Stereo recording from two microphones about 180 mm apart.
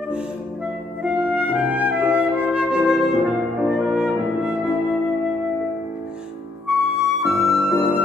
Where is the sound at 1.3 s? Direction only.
10° right (ahead or behind).